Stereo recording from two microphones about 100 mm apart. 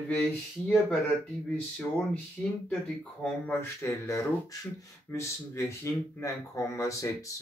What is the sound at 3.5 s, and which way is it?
Speech, 30° left (ahead or behind).